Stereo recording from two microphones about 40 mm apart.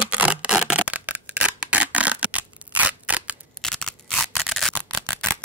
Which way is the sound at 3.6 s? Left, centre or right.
Centre.